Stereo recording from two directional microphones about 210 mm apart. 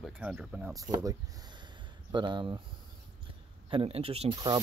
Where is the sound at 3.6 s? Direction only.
25° right (ahead or behind).